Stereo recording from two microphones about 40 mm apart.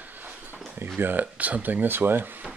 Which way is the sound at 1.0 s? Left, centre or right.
Right.